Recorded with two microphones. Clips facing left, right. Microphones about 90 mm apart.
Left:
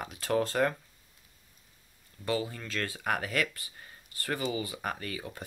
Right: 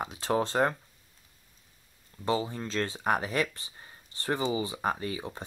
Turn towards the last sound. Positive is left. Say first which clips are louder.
# right 4 dB
turn(degrees=-25)  # may be behind; listen again after turning